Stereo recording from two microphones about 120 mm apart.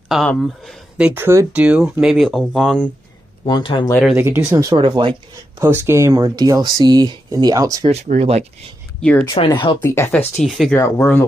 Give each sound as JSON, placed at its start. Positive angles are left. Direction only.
{"t": 0.4, "sound": "speech", "side_deg": -5}
{"t": 3.4, "sound": "speech", "side_deg": 40}
{"t": 4.1, "sound": "speech", "side_deg": -15}
{"t": 4.6, "sound": "speech", "side_deg": -30}
{"t": 4.8, "sound": "speech", "side_deg": -45}
{"t": 5.6, "sound": "speech", "side_deg": -20}
{"t": 7.9, "sound": "speech", "side_deg": -70}
{"t": 9.3, "sound": "speech", "side_deg": 40}
{"t": 9.8, "sound": "speech", "side_deg": 20}
{"t": 10.1, "sound": "speech", "side_deg": 5}
{"t": 10.7, "sound": "speech", "side_deg": 20}